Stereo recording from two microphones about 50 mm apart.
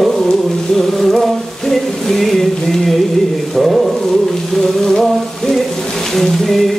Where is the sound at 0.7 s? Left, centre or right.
Centre.